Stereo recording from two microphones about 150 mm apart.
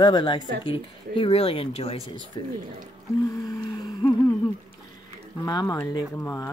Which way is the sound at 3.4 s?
30° left (ahead or behind).